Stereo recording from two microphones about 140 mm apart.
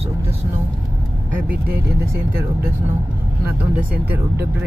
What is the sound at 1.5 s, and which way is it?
Speech, 15° right (ahead or behind).